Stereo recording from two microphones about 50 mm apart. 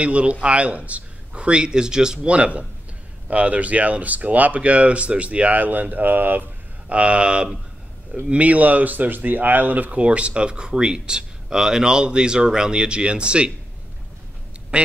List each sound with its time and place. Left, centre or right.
0.0 s speech: right
6.9 s speech: right
14.7 s speech: right